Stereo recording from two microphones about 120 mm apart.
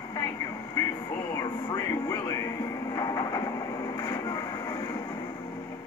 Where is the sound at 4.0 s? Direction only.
30° left (ahead or behind).